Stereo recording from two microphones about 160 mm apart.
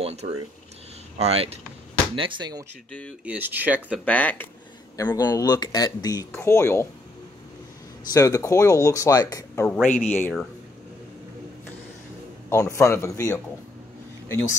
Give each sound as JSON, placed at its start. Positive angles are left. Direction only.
{"t": 0.0, "sound": "a sound", "side_deg": -45}
{"t": 1.1, "sound": "speech", "side_deg": -40}
{"t": 3.3, "sound": "speech", "side_deg": -10}
{"t": 3.9, "sound": "speech", "side_deg": 10}
{"t": 4.9, "sound": "speech", "side_deg": 20}
{"t": 8.1, "sound": "speech", "side_deg": 20}
{"t": 10.0, "sound": "speech", "side_deg": 10}
{"t": 12.4, "sound": "speech", "side_deg": 20}